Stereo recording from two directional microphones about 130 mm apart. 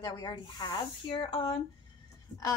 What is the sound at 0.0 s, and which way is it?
A woman's voice, 35° left (ahead or behind).